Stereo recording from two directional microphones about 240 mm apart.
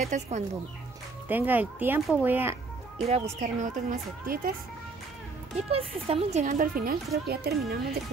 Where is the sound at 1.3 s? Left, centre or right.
Centre.